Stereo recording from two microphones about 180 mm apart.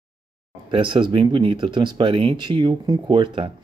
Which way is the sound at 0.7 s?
25° right (ahead or behind).